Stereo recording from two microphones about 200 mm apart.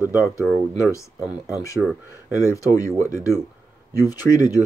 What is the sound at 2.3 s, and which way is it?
Speech, 15° left (ahead or behind).